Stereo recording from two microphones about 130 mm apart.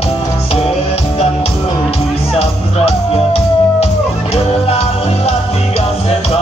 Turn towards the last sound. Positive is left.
turn(degrees=50)  # may be behind; listen again after turning